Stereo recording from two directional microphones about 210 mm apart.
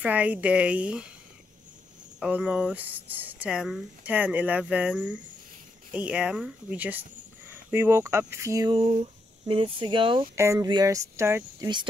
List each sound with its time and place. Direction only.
0.0 s a woman's voice: 5° right (ahead or behind)
2.1 s a woman's voice: 5° right (ahead or behind)